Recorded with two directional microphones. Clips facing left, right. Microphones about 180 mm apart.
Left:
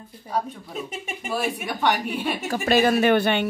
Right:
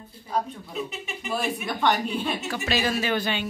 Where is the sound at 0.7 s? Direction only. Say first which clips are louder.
Even; 45° left (ahead or behind).